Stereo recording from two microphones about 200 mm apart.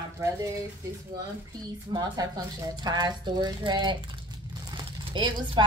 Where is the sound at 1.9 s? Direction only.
20° right (ahead or behind).